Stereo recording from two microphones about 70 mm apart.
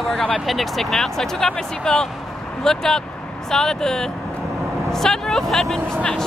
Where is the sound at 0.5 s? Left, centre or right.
Centre.